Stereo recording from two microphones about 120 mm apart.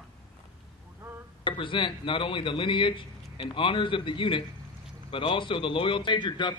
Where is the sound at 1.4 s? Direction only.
45° left (ahead or behind).